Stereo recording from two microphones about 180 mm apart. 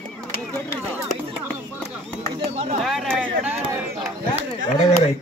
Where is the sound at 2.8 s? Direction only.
Centre (ahead or behind).